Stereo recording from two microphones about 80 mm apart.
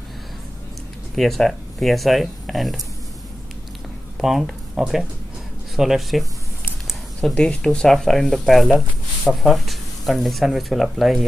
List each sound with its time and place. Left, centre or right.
1.1 s speech: centre
4.2 s speech: centre